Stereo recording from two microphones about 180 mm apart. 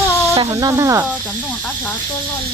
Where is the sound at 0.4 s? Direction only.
20° right (ahead or behind).